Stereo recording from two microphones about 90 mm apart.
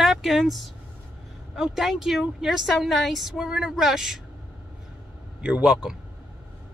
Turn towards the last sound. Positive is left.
turn(degrees=-5)  # may be behind; listen again after turning